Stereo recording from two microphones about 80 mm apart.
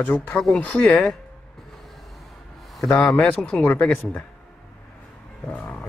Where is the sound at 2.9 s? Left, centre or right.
Centre.